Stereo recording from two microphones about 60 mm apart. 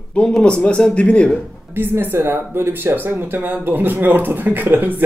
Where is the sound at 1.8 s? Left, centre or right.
Right.